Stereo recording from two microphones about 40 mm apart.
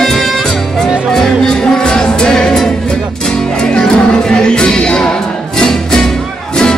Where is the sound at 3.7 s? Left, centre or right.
Left.